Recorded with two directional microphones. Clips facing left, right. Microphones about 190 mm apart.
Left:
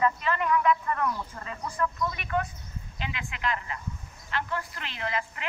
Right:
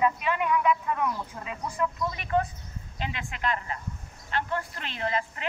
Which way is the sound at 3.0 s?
40° right (ahead or behind).